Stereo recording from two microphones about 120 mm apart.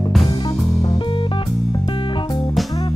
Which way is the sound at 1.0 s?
45° left (ahead or behind).